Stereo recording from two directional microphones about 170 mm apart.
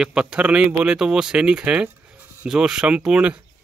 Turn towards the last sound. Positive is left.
turn(degrees=-5)  # may be behind; listen again after turning